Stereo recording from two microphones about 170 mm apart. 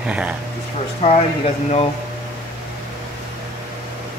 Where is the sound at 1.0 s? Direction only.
35° left (ahead or behind).